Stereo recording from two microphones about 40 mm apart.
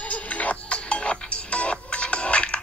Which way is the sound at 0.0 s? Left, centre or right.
Left.